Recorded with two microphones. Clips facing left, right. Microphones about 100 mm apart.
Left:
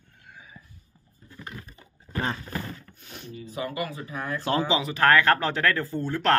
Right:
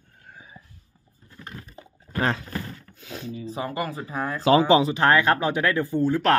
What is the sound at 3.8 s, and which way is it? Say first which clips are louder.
Speech: right 4 dB; 35° right (ahead or behind).